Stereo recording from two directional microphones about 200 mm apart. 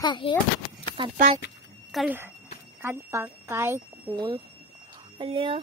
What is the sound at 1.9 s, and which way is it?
Speech, centre (ahead or behind).